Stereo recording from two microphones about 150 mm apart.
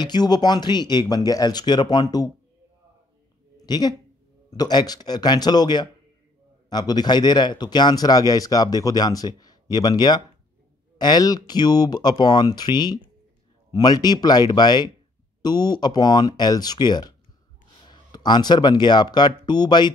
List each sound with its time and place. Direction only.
0.0 s speech: 30° left (ahead or behind)
3.5 s a sound: 25° left (ahead or behind)
4.5 s speech: 25° left (ahead or behind)